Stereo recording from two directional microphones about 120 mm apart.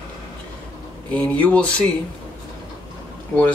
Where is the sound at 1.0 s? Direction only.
10° left (ahead or behind).